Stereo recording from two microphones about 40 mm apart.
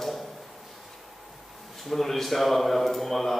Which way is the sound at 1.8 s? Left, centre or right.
Centre.